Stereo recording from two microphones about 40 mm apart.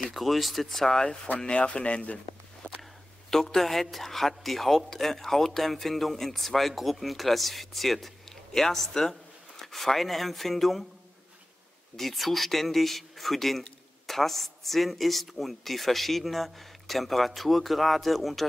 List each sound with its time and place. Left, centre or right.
0.1 s speech: centre
1.4 s speech: left
2.8 s speech: centre
12.0 s speech: centre